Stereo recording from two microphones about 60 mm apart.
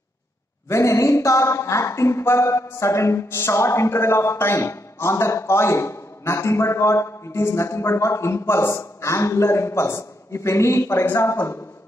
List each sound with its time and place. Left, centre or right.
0.7 s speech: left